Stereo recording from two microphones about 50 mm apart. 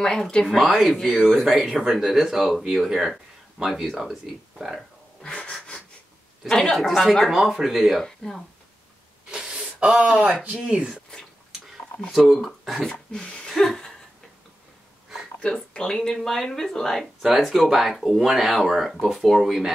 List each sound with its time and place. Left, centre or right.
0.3 s speech: centre
0.6 s speech: centre
3.9 s speech: centre
5.2 s wheeze: centre
6.5 s speech: centre
8.0 s speech: centre
9.5 s a sound: right
10.4 s speech: right
12.1 s speech: centre
12.8 s speech: centre
13.7 s laughter: centre
15.4 s speech: centre